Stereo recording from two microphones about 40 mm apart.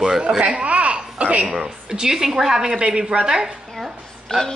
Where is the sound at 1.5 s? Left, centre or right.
Centre.